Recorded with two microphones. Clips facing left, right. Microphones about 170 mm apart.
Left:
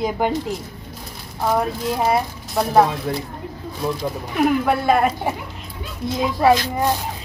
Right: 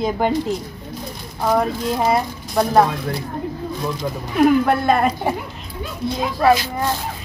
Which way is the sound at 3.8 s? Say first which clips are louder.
Left 4 dB; 10° left (ahead or behind).